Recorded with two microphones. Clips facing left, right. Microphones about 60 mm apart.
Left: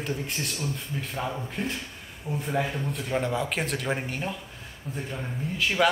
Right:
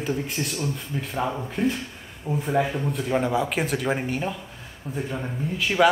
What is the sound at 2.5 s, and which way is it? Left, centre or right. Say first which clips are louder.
Speech: right 5 dB; centre.